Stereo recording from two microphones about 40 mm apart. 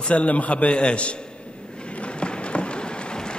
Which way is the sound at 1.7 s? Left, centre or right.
Left.